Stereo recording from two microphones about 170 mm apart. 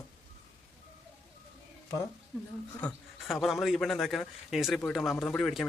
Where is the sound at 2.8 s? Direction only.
Centre (ahead or behind).